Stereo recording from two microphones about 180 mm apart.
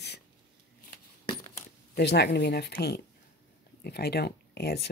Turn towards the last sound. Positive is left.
turn(degrees=65)  # may be behind; listen again after turning